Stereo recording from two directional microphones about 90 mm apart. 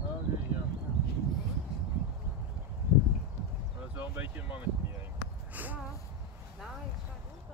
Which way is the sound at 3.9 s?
20° right (ahead or behind).